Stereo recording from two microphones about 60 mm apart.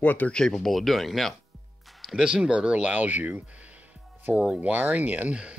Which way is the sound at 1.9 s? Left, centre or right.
Centre.